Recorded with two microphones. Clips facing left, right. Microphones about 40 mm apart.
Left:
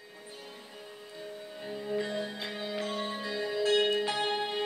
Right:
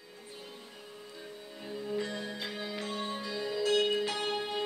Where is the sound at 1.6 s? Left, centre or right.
Centre.